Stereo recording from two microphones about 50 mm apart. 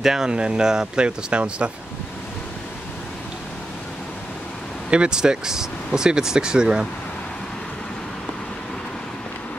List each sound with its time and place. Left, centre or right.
0.0 s speech: centre
4.9 s speech: centre